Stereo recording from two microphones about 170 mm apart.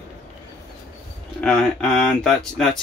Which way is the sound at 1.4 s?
5° left (ahead or behind).